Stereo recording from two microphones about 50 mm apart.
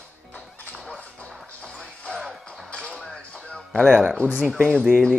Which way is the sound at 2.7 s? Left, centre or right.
Left.